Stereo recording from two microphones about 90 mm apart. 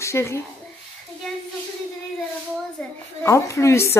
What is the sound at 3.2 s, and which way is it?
Speech, 30° left (ahead or behind).